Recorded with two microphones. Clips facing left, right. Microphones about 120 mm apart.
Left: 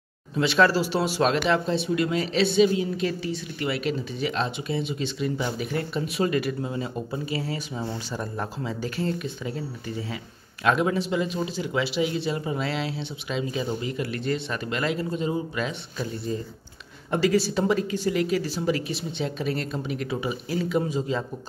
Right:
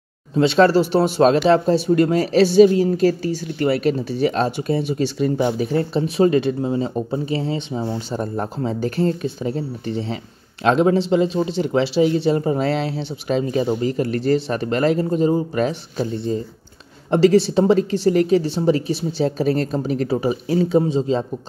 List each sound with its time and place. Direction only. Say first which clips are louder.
0.3 s speech: right 6 dB; 30° right (ahead or behind)
0.7 s speech: right 8 dB; 50° right (ahead or behind)
1.2 s speech: right 9 dB; 35° right (ahead or behind)